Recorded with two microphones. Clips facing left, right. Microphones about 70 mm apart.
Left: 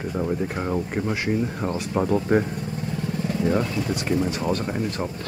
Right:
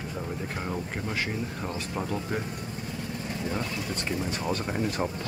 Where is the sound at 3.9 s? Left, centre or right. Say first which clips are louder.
Left 7 dB; centre.